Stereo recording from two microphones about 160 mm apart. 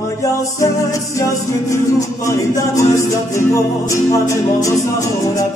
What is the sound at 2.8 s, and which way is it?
Music, 20° left (ahead or behind).